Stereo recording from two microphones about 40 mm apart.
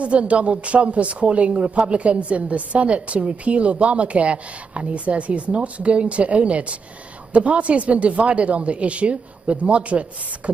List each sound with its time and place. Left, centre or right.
0.0 s speech: right